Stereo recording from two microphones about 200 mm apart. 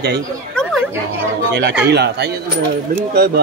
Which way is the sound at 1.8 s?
55° right (ahead or behind).